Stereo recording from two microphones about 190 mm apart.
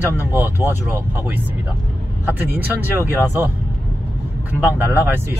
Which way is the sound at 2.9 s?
10° right (ahead or behind).